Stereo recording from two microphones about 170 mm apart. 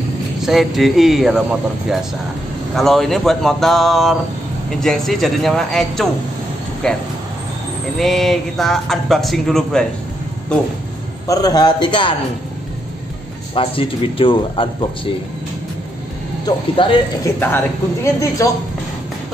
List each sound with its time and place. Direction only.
0.4 s speech: centre (ahead or behind)
11.2 s a man's voice: 20° left (ahead or behind)
13.6 s speech: 30° left (ahead or behind)
16.4 s speech: 30° left (ahead or behind)
17.2 s a woman's voice: 10° left (ahead or behind)